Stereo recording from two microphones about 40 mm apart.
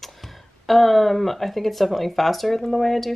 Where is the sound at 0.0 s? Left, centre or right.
Centre.